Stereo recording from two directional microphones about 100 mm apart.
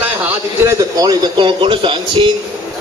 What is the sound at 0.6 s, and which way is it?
A man's voice, 35° right (ahead or behind).